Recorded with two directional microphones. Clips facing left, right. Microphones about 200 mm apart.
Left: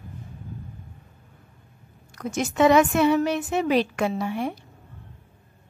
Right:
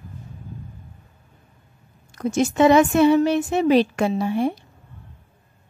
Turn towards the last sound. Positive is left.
turn(degrees=-30)  # may be behind; listen again after turning